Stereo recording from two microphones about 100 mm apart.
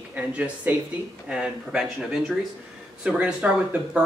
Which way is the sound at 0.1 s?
15° right (ahead or behind).